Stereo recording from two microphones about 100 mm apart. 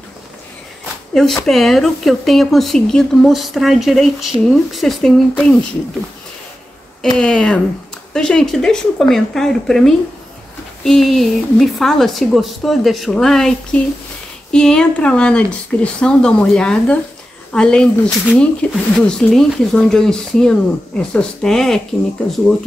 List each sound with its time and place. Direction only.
1.1 s speech: 5° left (ahead or behind)
7.2 s speech: 10° left (ahead or behind)